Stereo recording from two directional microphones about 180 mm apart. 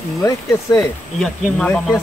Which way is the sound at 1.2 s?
5° left (ahead or behind).